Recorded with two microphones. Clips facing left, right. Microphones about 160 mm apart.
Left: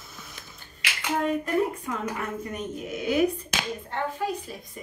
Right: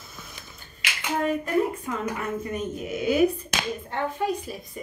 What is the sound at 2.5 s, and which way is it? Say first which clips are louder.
Speech: right 3 dB; 5° right (ahead or behind).